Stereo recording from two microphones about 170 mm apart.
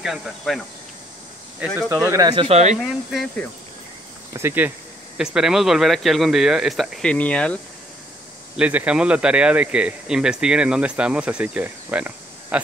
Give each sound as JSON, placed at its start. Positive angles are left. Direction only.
{"t": 0.0, "sound": "speech", "side_deg": 0}
{"t": 1.6, "sound": "speech", "side_deg": -10}
{"t": 2.4, "sound": "speech", "side_deg": -40}
{"t": 2.8, "sound": "speech", "side_deg": 0}
{"t": 4.3, "sound": "speech", "side_deg": -15}
{"t": 8.5, "sound": "speech", "side_deg": -5}